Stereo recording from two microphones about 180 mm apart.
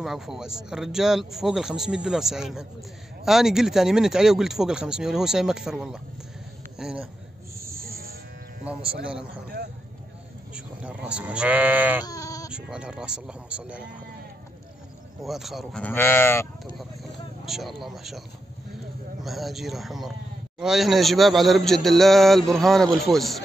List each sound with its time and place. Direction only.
0.0 s a man's voice: centre (ahead or behind)
7.5 s snoring: 15° right (ahead or behind)
7.8 s electric shaver: 55° right (ahead or behind)
10.5 s speech: 5° right (ahead or behind)
12.0 s bleat: 20° left (ahead or behind)
12.4 s speech: 5° right (ahead or behind)
15.2 s speech: centre (ahead or behind)
17.5 s speech: centre (ahead or behind)
19.2 s speech: centre (ahead or behind)